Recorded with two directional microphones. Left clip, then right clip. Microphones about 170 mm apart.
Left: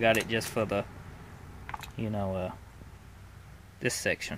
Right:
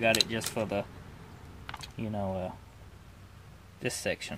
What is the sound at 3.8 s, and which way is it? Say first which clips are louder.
Speech: left 3 dB; 15° left (ahead or behind).